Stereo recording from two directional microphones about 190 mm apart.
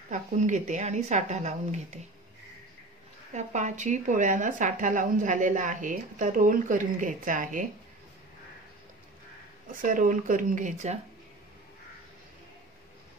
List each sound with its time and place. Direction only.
0.1 s speech: 40° right (ahead or behind)
3.3 s speech: 40° right (ahead or behind)
9.7 s speech: 45° right (ahead or behind)